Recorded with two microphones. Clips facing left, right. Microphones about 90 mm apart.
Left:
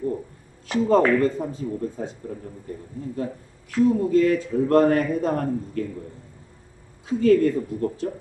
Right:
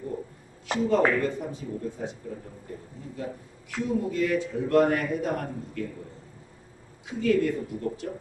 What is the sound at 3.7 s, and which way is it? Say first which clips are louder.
Speech: left 9 dB; 40° left (ahead or behind).